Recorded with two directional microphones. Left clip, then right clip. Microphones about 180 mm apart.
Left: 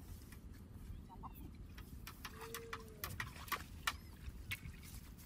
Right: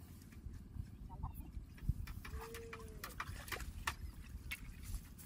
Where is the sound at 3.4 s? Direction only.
35° left (ahead or behind).